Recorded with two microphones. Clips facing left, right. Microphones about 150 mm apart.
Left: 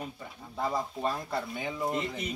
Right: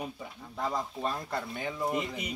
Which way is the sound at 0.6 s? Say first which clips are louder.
Left 1 dB; 5° left (ahead or behind).